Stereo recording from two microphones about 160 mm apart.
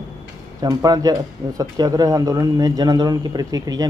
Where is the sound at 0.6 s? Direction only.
25° right (ahead or behind).